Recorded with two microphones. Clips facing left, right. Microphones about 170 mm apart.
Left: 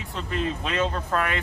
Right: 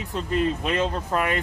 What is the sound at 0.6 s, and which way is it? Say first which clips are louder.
Speech: right 2 dB; 15° right (ahead or behind).